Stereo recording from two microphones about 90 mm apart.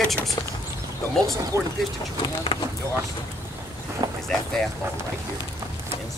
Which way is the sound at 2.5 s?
90° left.